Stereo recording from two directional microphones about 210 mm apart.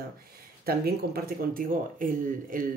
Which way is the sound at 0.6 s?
45° right (ahead or behind).